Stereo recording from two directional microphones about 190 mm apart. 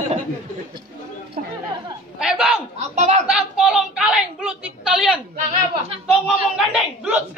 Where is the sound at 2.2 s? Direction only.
5° right (ahead or behind).